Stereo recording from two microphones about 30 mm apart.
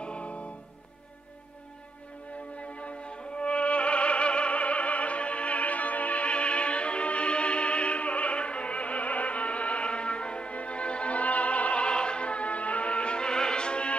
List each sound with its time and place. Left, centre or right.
0.0 s music: left
2.5 s music: left
11.9 s music: left